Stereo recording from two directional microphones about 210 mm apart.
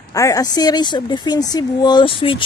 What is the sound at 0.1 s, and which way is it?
A woman's voice, 15° left (ahead or behind).